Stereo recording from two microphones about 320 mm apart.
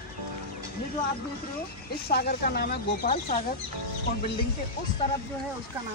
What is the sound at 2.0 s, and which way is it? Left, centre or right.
Speech, left.